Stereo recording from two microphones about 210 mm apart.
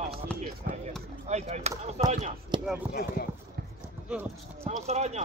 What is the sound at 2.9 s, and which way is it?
Speech, 45° left (ahead or behind).